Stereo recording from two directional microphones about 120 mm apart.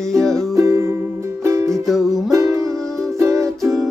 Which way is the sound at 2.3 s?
30° right (ahead or behind).